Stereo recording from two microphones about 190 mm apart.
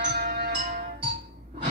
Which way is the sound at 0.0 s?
60° right (ahead or behind).